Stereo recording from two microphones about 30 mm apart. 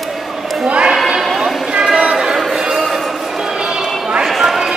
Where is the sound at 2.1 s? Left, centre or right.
Centre.